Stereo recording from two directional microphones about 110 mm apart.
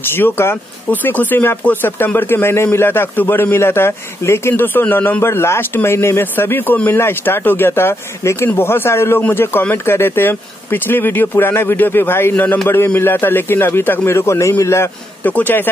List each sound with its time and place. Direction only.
0.1 s speech: 20° left (ahead or behind)